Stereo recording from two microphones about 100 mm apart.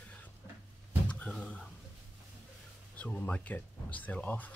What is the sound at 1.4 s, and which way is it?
Speech, 15° left (ahead or behind).